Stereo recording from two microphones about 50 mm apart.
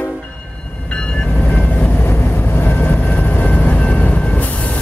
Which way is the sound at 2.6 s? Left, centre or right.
Left.